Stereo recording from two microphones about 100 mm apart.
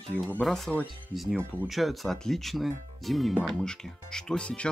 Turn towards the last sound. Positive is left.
turn(degrees=10)  # may be behind; listen again after turning